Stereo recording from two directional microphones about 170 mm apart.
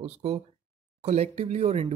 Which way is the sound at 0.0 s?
40° right (ahead or behind).